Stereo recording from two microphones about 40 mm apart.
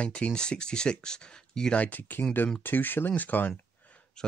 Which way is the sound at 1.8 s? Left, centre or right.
Left.